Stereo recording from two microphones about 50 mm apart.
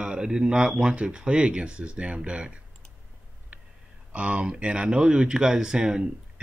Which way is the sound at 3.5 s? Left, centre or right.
Right.